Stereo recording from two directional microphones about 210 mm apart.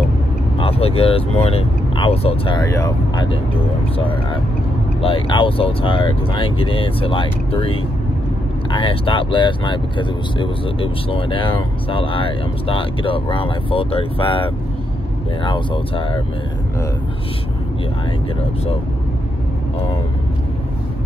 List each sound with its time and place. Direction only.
0.6 s speech: 25° left (ahead or behind)
2.6 s speech: 15° left (ahead or behind)